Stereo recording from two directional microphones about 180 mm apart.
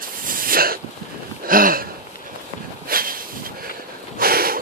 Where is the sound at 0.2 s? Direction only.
50° right (ahead or behind).